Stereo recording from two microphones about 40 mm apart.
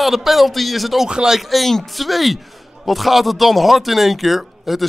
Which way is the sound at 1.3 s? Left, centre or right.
Centre.